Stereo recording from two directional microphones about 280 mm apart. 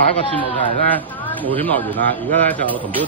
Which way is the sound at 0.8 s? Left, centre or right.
Centre.